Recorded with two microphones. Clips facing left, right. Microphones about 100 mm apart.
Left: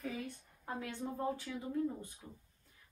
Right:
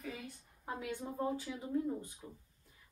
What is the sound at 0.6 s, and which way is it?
Speech, 15° right (ahead or behind).